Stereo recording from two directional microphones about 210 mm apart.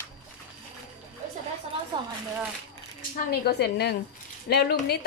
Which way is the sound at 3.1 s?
45° left (ahead or behind).